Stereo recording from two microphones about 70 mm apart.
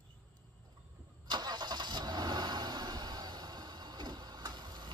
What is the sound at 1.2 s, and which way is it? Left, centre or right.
Vehicle, right.